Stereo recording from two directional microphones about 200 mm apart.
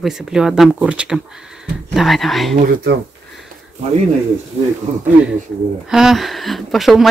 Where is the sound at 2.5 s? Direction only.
45° right (ahead or behind).